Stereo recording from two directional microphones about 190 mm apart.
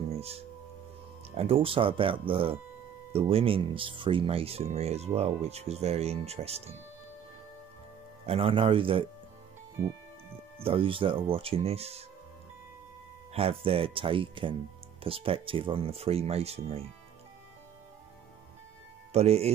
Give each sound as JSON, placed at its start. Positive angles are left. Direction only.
{"t": 0.1, "sound": "music", "side_deg": -35}
{"t": 1.3, "sound": "speech", "side_deg": -30}
{"t": 8.3, "sound": "speech", "side_deg": -30}
{"t": 9.8, "sound": "music", "side_deg": -15}
{"t": 10.6, "sound": "speech", "side_deg": -30}
{"t": 13.3, "sound": "speech", "side_deg": -30}
{"t": 19.1, "sound": "speech", "side_deg": -35}